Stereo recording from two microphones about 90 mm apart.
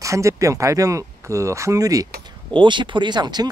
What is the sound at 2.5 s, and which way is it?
Speech, 60° right (ahead or behind).